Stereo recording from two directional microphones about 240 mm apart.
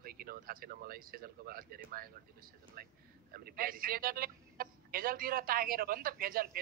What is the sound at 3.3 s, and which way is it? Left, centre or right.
A man's voice, right.